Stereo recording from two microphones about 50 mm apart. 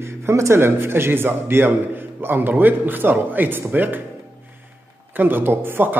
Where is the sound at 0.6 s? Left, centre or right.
Right.